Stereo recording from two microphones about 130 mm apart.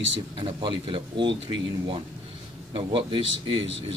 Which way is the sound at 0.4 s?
40° right (ahead or behind).